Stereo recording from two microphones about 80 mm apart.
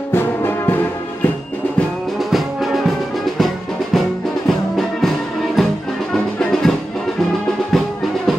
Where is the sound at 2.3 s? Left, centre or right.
Centre.